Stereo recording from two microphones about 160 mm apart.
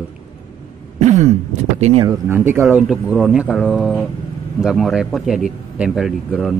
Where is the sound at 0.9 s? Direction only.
45° right (ahead or behind).